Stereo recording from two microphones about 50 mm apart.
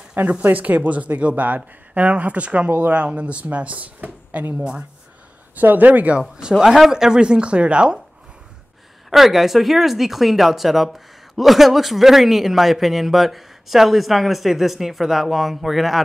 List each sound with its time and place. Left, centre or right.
0.1 s speech: right
4.6 s speech: centre
5.6 s speech: right
6.5 s speech: centre
9.1 s speech: centre